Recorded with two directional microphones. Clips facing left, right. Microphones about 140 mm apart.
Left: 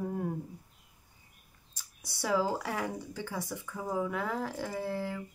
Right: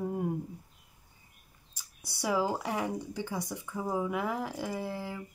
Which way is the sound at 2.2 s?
15° right (ahead or behind).